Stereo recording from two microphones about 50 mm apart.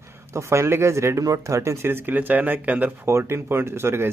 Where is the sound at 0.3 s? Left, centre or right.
Right.